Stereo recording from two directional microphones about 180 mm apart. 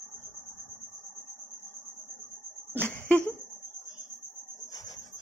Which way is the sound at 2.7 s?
10° left (ahead or behind).